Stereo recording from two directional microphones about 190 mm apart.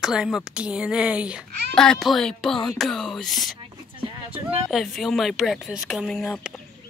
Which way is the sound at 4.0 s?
30° right (ahead or behind).